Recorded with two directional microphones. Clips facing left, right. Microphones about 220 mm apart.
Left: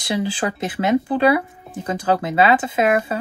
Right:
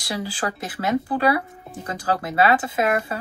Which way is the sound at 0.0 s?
20° left (ahead or behind).